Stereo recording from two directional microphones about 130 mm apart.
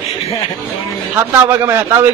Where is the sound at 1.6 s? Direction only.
20° right (ahead or behind).